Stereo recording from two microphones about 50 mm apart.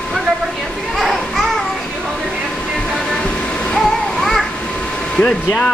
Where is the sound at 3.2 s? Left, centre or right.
Centre.